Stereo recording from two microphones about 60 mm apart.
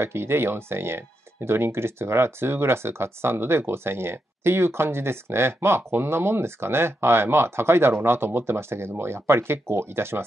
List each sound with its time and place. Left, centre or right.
0.0 s speech: right